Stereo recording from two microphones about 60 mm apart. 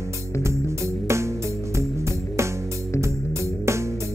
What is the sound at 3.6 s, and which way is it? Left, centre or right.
Music, right.